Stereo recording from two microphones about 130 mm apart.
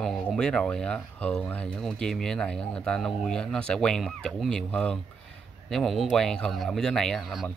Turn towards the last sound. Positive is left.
turn(degrees=0)  # may be behind; listen again after turning